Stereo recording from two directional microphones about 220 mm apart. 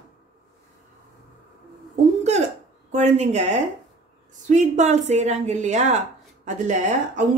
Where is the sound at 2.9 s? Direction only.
30° right (ahead or behind).